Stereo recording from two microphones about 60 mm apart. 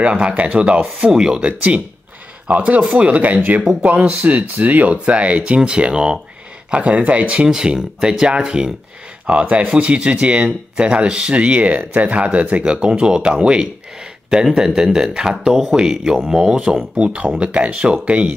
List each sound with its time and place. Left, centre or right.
0.0 s speech: centre
12.7 s speech: centre